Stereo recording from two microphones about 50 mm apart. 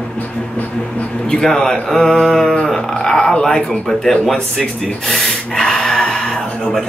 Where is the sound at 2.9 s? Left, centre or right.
Centre.